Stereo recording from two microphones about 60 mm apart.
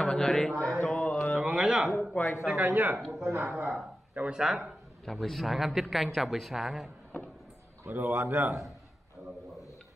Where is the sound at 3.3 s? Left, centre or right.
Right.